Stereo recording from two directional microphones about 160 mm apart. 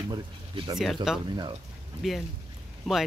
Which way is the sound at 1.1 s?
5° right (ahead or behind).